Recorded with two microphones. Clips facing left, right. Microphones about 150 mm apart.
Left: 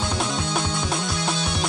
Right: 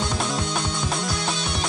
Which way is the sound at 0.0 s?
Centre (ahead or behind).